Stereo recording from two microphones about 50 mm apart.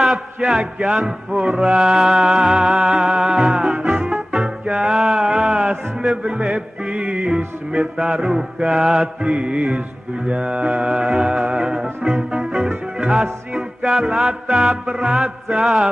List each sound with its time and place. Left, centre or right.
0.0 s a sound: centre
1.0 s music: centre
4.8 s music: centre
8.6 s music: centre
9.2 s mantra: right
11.0 s music: centre
13.1 s music: centre